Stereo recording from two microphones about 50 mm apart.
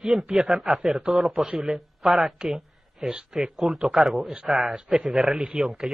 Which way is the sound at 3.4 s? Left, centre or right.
Centre.